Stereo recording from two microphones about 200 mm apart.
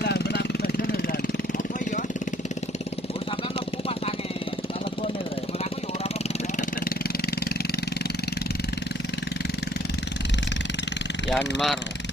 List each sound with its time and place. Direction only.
0.0 s vehicle: 55° left (ahead or behind)
11.2 s speech: centre (ahead or behind)